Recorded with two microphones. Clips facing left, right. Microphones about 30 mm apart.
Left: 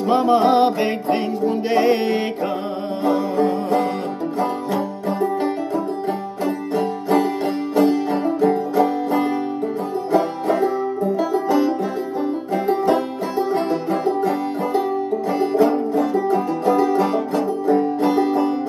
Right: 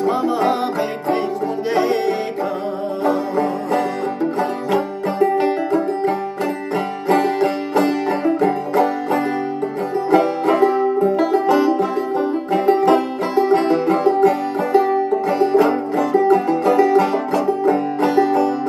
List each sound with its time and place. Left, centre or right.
0.1 s music: left
1.9 s music: left
3.0 s music: right
4.7 s music: right
5.4 s music: right